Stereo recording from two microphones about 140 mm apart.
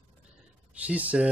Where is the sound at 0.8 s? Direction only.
10° right (ahead or behind).